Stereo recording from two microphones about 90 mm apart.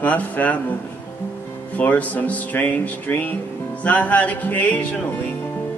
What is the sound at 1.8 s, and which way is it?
Speech, 20° left (ahead or behind).